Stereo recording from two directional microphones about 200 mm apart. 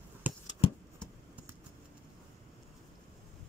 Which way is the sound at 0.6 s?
30° left (ahead or behind).